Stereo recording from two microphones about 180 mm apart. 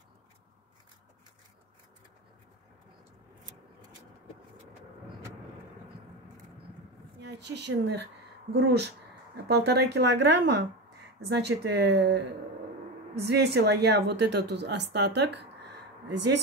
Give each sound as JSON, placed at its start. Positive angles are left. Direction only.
{"t": 7.2, "sound": "a woman's voice", "side_deg": -70}